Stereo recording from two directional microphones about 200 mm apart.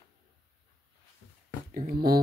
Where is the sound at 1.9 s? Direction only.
50° right (ahead or behind).